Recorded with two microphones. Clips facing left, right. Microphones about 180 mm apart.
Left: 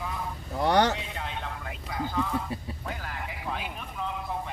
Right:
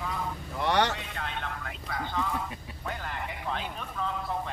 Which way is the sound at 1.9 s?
5° left (ahead or behind).